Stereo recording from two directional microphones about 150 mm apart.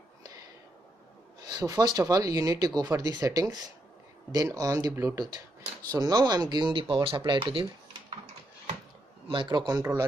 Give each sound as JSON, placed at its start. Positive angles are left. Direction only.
{"t": 1.4, "sound": "speech", "side_deg": -25}
{"t": 9.3, "sound": "speech", "side_deg": -30}